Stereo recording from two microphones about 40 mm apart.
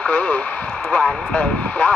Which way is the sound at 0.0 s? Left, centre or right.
Left.